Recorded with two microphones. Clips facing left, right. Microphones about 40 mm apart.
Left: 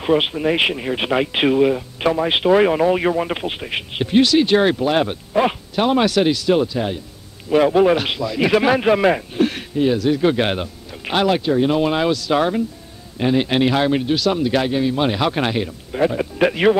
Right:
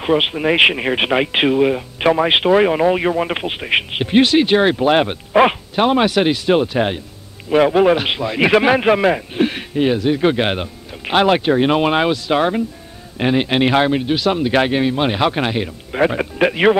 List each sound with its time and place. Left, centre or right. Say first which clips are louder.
0.0 s speech: right 1 dB; centre
2.5 s speech: left 1 dB; centre
3.6 s speech: right 5 dB; right
5.8 s speech: right 1 dB; centre; by 7.0 s right
7.4 s speech: right 1 dB; right
8.1 s speech: right 3 dB; right
9.3 s a sound: right 1 dB; right
9.8 s a man's voice: right 1 dB; right
11.2 s speech: right 1 dB; right
14.6 s speech: right 3 dB; right
15.0 s speech: right 2 dB; right
15.6 s speech: right 2 dB; right
16.3 s speech: right 2 dB; centre